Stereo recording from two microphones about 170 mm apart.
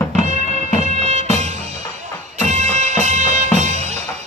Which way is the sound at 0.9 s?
40° right (ahead or behind).